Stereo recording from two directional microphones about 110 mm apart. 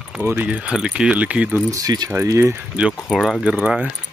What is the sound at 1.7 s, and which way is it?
Speech, 35° right (ahead or behind).